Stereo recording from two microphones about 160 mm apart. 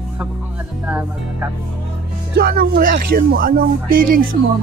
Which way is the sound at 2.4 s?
70° right (ahead or behind).